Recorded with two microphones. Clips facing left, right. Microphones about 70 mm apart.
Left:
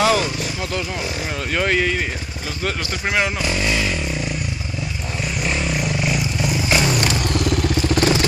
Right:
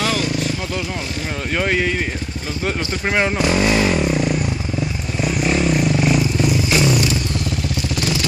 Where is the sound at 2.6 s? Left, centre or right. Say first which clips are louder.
Right 2 dB; centre; by 4.2 s right.